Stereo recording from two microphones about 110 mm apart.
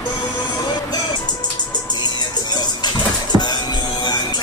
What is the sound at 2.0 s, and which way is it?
Music, 40° left (ahead or behind).